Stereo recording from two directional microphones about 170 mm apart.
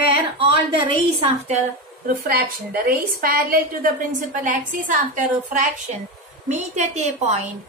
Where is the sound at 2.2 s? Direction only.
60° right (ahead or behind).